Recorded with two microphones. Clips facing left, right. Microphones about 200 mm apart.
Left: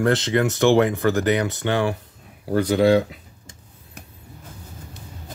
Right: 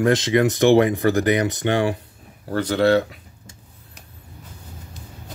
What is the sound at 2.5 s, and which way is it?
Speech, 15° left (ahead or behind).